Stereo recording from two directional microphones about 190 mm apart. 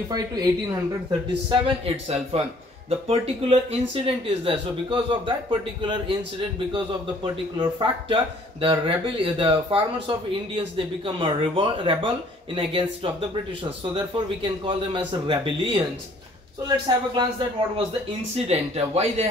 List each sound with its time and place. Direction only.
0.1 s speech: 20° right (ahead or behind)
7.5 s speech: 25° right (ahead or behind)
18.3 s speech: 35° right (ahead or behind)